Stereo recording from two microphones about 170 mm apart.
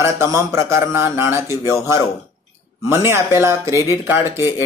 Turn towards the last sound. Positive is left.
turn(degrees=-15)  # may be behind; listen again after turning